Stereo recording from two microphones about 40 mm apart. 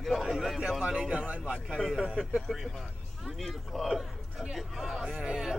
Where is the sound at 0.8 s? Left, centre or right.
Centre.